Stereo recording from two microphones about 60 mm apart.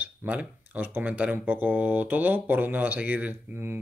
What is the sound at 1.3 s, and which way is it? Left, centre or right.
Speech, right.